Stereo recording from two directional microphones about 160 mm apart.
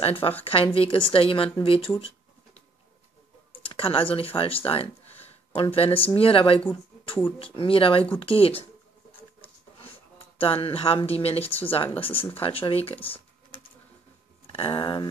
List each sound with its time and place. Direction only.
0.0 s speech: 35° left (ahead or behind)
2.0 s a sound: 35° left (ahead or behind)
3.6 s speech: 35° left (ahead or behind)
5.2 s a sound: 35° left (ahead or behind)
6.1 s speech: 35° left (ahead or behind)
9.8 s speech: 35° left (ahead or behind)